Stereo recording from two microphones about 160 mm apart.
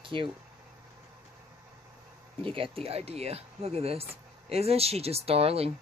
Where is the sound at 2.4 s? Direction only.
35° right (ahead or behind).